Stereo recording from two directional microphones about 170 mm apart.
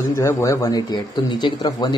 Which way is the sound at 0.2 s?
20° left (ahead or behind).